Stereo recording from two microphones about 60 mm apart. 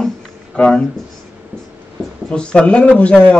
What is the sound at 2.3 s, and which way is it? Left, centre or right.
Speech, centre.